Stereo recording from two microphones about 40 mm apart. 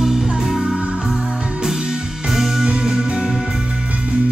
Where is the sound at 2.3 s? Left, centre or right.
Centre.